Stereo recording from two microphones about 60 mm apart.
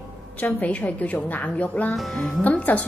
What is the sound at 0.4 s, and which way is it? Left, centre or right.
A woman's voice, left.